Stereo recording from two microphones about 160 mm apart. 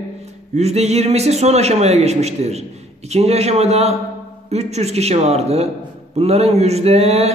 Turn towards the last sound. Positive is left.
turn(degrees=-40)  # may be behind; listen again after turning